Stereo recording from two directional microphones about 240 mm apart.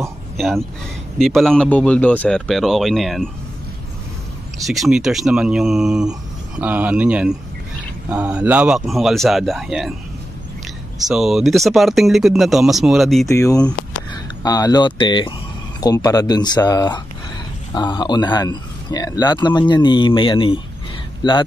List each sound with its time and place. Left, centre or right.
0.4 s speech: centre
4.6 s speech: centre
11.1 s speech: centre
13.3 s a man's voice: centre